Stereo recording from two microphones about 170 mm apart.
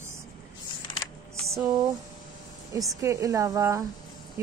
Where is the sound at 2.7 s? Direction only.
20° right (ahead or behind).